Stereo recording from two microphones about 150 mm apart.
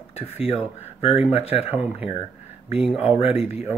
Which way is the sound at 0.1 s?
40° left (ahead or behind).